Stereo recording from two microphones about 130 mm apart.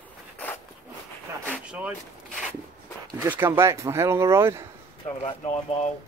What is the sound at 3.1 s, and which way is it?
Speech, 15° right (ahead or behind).